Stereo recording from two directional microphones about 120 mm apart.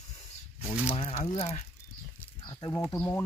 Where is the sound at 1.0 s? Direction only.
55° left (ahead or behind).